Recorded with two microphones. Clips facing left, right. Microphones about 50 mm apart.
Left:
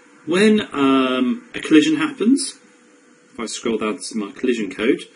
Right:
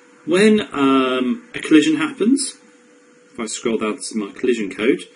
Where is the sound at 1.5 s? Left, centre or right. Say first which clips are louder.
Right 1 dB; centre.